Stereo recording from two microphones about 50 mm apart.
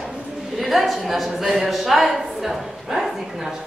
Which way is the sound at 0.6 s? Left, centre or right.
Centre.